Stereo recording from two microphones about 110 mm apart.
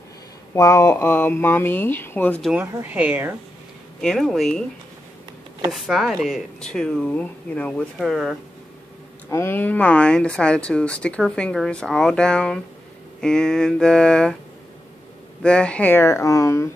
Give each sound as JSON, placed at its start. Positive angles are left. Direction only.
{"t": 0.6, "sound": "speech", "side_deg": 30}
{"t": 2.6, "sound": "speech", "side_deg": -20}
{"t": 4.0, "sound": "speech", "side_deg": 5}
{"t": 5.7, "sound": "speech", "side_deg": 0}
{"t": 8.0, "sound": "speech", "side_deg": 0}
{"t": 9.3, "sound": "speech", "side_deg": 20}
{"t": 15.4, "sound": "speech", "side_deg": 10}